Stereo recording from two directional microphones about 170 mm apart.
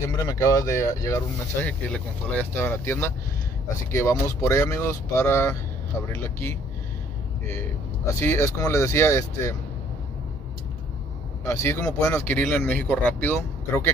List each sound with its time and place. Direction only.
0.2 s speech: 20° left (ahead or behind)
11.4 s speech: 15° left (ahead or behind)